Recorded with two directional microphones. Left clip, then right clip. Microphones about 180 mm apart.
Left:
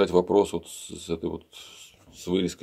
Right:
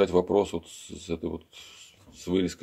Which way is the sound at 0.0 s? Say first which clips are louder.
Left 2 dB; 20° left (ahead or behind).